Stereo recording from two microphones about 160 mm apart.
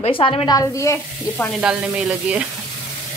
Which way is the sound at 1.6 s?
5° right (ahead or behind).